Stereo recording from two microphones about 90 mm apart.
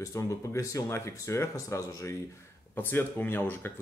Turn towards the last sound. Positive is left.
turn(degrees=20)  # may be behind; listen again after turning